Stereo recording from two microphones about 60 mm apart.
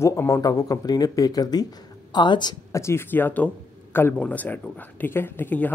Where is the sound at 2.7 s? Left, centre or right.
Left.